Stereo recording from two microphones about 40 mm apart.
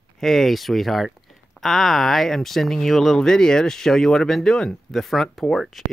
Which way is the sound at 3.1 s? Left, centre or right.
Centre.